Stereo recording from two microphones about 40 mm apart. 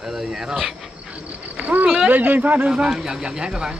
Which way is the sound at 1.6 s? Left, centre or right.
Right.